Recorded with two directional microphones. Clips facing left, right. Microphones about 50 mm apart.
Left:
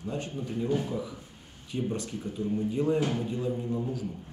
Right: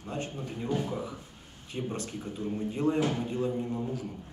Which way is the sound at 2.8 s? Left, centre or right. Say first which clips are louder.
Right 1 dB; right.